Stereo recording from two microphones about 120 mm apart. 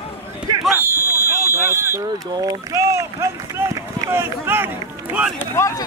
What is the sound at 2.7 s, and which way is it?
Speech, 25° right (ahead or behind).